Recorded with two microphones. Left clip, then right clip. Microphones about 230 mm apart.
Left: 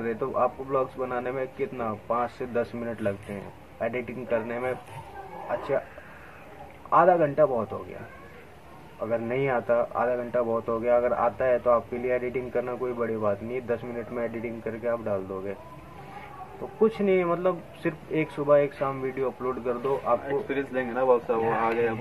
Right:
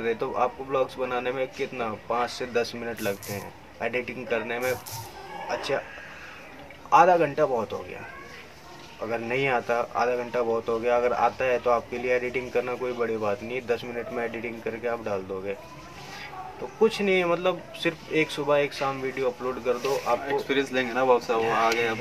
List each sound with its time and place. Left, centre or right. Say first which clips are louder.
0.0 s speech: even; centre
6.9 s speech: right 2 dB; centre
9.0 s speech: even; centre
16.8 s speech: right 1 dB; centre
20.2 s speech: right 3 dB; centre